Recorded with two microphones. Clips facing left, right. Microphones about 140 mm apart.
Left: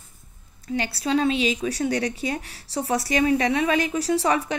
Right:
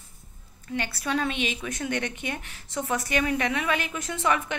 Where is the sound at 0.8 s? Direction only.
30° left (ahead or behind).